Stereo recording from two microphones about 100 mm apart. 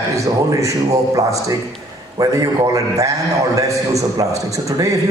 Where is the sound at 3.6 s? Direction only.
35° right (ahead or behind).